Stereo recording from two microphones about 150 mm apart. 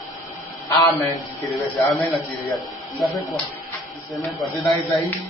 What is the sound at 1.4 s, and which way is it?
Speech, centre (ahead or behind).